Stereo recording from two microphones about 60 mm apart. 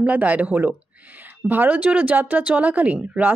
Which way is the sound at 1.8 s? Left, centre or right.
Centre.